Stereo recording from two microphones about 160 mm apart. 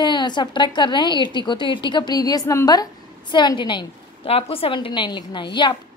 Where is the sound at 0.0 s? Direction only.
30° left (ahead or behind).